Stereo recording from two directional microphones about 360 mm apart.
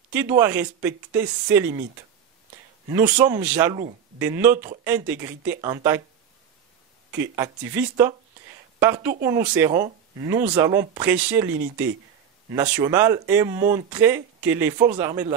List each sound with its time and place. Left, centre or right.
0.1 s speech: centre
2.9 s speech: centre
7.2 s a woman's voice: centre